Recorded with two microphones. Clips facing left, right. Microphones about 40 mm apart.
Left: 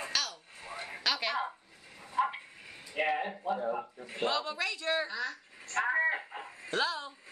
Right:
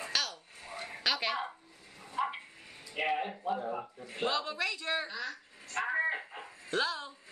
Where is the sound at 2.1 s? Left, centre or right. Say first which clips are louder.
Left 3 dB; centre.